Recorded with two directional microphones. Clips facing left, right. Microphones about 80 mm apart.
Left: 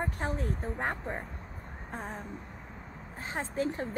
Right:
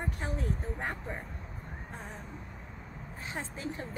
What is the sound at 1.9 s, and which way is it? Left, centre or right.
Vehicle, left.